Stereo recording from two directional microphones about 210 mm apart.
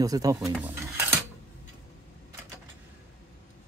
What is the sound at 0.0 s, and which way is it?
Speech, 15° right (ahead or behind).